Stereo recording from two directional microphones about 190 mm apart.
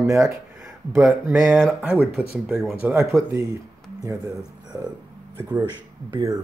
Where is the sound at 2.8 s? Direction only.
15° right (ahead or behind).